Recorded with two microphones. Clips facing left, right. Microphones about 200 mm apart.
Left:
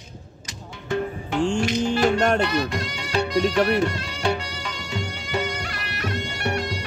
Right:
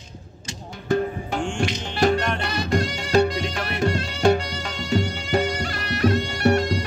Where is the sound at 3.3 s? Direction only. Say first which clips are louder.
Left 8 dB; 40° left (ahead or behind).